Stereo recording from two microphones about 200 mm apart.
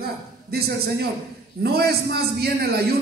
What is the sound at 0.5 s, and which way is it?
A man's voice, 50° right (ahead or behind).